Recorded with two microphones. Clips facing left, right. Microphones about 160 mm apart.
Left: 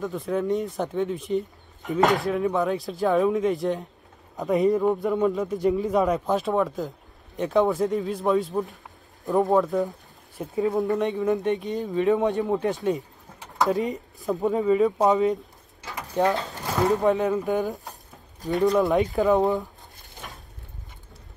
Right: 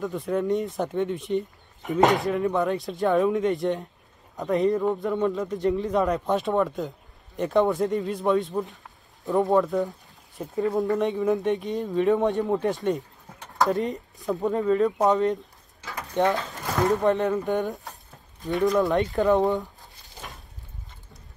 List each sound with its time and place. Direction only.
0.0 s speech: centre (ahead or behind)
15.8 s pigeon: 15° left (ahead or behind)
16.7 s speech: 5° left (ahead or behind)